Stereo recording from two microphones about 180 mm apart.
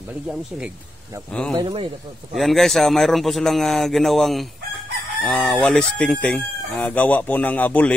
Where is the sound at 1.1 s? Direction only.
20° right (ahead or behind).